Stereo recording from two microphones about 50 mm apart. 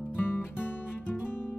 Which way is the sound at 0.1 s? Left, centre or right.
Left.